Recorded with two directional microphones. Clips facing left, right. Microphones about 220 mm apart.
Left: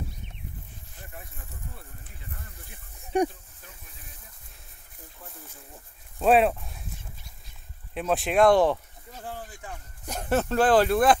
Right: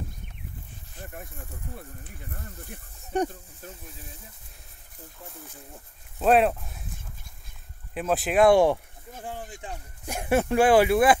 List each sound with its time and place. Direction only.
2.3 s speech: 50° right (ahead or behind)
3.1 s speech: 10° left (ahead or behind)
3.6 s speech: 40° right (ahead or behind)
6.1 s speech: centre (ahead or behind)
7.9 s speech: centre (ahead or behind)